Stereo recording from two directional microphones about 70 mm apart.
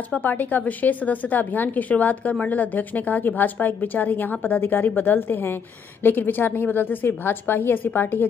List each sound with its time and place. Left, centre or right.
0.2 s a woman's voice: left